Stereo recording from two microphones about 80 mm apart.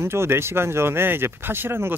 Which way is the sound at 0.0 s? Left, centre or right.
Right.